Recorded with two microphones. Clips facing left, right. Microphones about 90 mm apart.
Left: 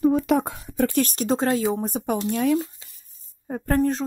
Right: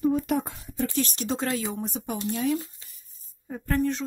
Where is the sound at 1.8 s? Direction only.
45° left (ahead or behind).